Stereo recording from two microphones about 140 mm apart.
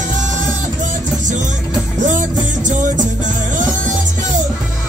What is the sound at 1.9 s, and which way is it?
Music, 60° right (ahead or behind).